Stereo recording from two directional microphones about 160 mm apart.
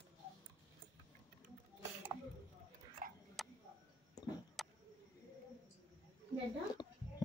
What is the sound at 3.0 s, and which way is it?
Tick-tock, 60° right (ahead or behind).